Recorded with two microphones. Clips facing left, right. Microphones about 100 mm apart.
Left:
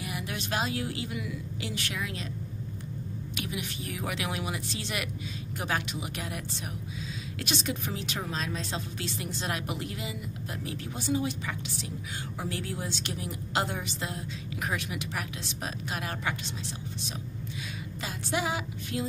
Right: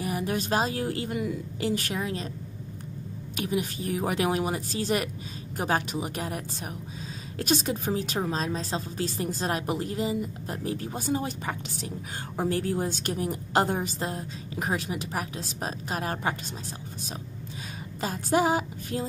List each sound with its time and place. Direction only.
0.0 s a woman's voice: 40° right (ahead or behind)
3.3 s a woman's voice: 40° right (ahead or behind)
18.0 s music: 40° right (ahead or behind)